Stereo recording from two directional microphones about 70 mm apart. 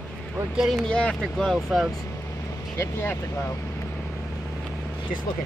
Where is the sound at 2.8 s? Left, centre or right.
Left.